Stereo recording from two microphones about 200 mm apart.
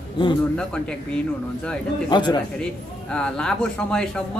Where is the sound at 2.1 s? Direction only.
20° left (ahead or behind).